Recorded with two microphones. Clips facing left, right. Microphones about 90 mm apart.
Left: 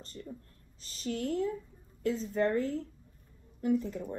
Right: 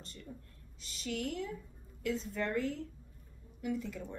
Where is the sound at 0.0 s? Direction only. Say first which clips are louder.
Left 6 dB; 40° left (ahead or behind).